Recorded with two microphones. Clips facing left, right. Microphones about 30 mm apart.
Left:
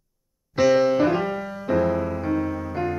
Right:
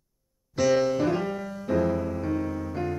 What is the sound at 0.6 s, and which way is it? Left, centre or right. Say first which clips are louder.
Music: left 5 dB; centre.